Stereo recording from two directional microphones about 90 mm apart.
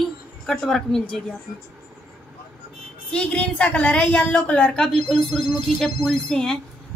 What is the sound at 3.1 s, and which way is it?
A woman's voice, 15° left (ahead or behind).